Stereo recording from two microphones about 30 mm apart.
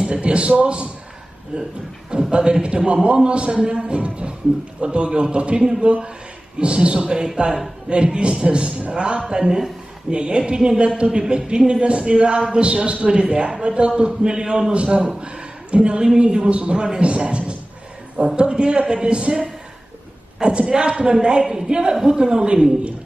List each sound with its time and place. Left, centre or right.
0.1 s a man's voice: right
2.3 s a man's voice: right
10.1 s a man's voice: right